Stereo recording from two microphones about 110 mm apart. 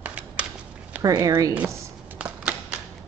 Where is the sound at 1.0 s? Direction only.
30° right (ahead or behind).